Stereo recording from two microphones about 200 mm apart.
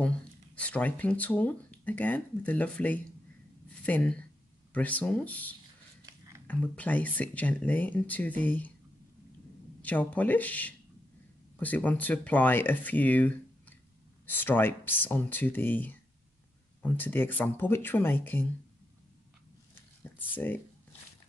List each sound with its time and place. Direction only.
0.6 s speech: 5° left (ahead or behind)
6.0 s a sound: 15° right (ahead or behind)
6.4 s speech: 10° left (ahead or behind)
9.8 s speech: 10° left (ahead or behind)
20.3 s speech: 10° left (ahead or behind)